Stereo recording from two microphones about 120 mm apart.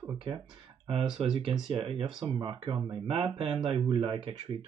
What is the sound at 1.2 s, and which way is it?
Speech, 45° right (ahead or behind).